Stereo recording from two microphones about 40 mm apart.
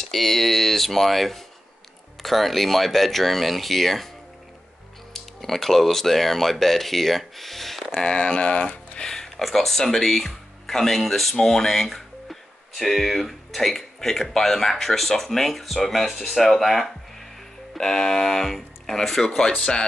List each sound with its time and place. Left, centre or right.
0.0 s speech: centre
5.1 s speech: centre
8.2 s speech: left
9.1 s speech: centre; by 19.9 s left